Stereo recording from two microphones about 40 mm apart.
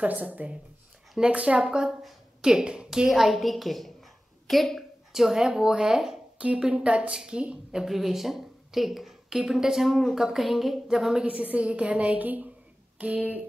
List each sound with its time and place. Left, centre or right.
0.0 s a woman's voice: right
1.7 s speech: centre
3.1 s a woman's voice: centre
5.1 s speech: centre
6.4 s speech: right
7.8 s a woman's voice: centre
11.4 s a woman's voice: right